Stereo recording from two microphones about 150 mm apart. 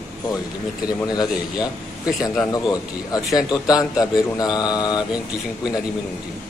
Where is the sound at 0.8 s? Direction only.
25° left (ahead or behind).